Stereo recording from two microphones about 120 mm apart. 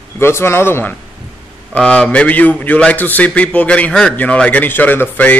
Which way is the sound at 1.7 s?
10° left (ahead or behind).